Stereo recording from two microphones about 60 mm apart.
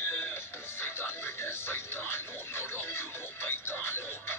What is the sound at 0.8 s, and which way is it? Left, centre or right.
Music, left.